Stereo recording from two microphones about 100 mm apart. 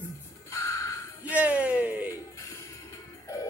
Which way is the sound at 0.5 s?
30° left (ahead or behind).